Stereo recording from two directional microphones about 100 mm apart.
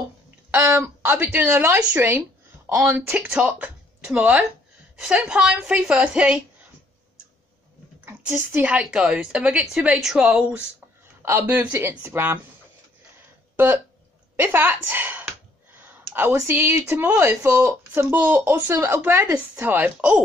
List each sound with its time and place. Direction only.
0.6 s a woman's voice: 25° right (ahead or behind)
1.0 s a woman's voice: 15° right (ahead or behind)
3.3 s a woman's voice: 10° right (ahead or behind)
8.4 s speech: 25° right (ahead or behind)
8.6 s a woman's voice: 10° right (ahead or behind)
14.3 s a sound: 20° right (ahead or behind)
16.3 s speech: 20° right (ahead or behind)
17.9 s speech: 20° right (ahead or behind)